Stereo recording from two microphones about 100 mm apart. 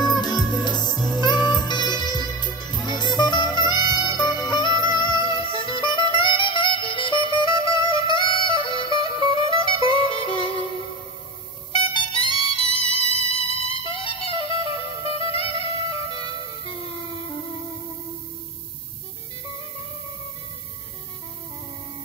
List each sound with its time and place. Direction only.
0.2 s music: 45° left (ahead or behind); by 10.7 s 65° left (ahead or behind)
11.8 s music: 60° left (ahead or behind); by 17.2 s 80° left